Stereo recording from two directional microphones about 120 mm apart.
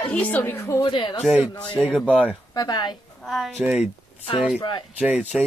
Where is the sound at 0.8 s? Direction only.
40° left (ahead or behind).